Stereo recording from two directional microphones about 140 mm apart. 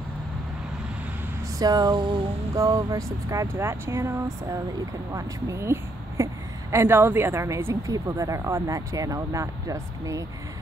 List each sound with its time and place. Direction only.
1.6 s speech: 30° right (ahead or behind)